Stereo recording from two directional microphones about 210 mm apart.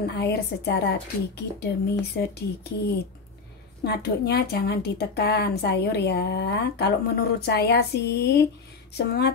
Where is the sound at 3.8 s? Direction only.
50° left (ahead or behind).